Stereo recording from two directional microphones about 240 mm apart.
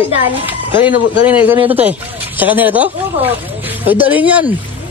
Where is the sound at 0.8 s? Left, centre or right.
Centre.